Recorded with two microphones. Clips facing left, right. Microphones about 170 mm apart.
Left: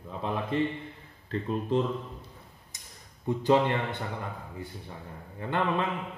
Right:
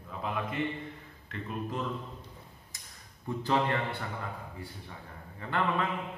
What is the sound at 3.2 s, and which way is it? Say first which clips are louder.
Speech: left 5 dB; 20° left (ahead or behind).